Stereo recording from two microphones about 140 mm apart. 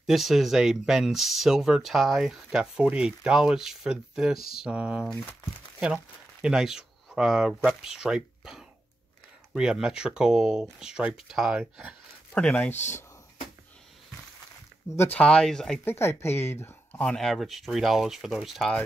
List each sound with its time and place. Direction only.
0.0 s speech: centre (ahead or behind)
4.6 s a sound: 5° right (ahead or behind)
6.4 s speech: 5° right (ahead or behind)
12.4 s speech: 10° left (ahead or behind)
15.1 s speech: 5° left (ahead or behind)
15.8 s speech: 15° left (ahead or behind); by 18.8 s centre (ahead or behind)